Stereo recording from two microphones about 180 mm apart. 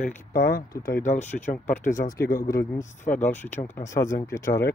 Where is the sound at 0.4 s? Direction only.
55° left (ahead or behind).